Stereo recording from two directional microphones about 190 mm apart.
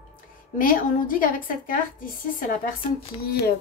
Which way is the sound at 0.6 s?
45° left (ahead or behind).